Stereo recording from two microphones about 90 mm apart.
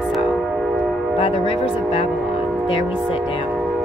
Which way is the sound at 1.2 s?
90° left.